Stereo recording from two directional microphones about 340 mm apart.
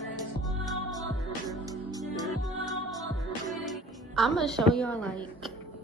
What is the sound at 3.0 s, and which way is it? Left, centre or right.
Music, centre.